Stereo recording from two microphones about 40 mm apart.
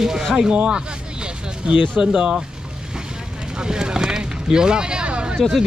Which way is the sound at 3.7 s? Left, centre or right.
Centre.